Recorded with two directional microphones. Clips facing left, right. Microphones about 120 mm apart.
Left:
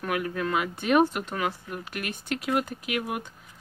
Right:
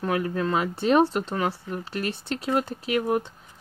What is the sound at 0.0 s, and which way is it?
Speech, 30° right (ahead or behind).